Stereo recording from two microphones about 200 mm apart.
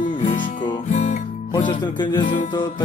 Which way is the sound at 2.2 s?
40° left (ahead or behind).